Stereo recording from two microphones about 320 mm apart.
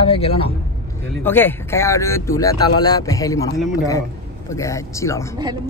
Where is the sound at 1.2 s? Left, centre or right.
Centre.